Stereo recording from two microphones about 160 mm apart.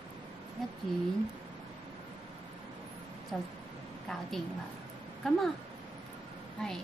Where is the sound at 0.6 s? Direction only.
Centre (ahead or behind).